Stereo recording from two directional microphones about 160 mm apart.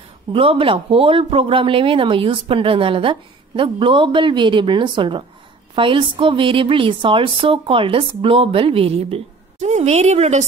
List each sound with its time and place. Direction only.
0.3 s speech: 35° right (ahead or behind)